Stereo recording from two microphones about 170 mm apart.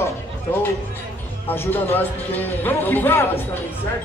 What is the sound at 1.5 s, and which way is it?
Speech, 15° left (ahead or behind).